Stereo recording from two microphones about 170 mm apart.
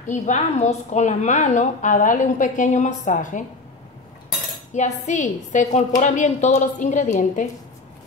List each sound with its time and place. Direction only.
0.0 s a woman's voice: 45° left (ahead or behind)
4.7 s a woman's voice: 45° left (ahead or behind)